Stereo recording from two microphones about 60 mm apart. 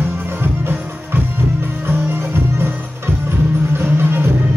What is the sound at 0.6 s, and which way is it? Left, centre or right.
Music, right.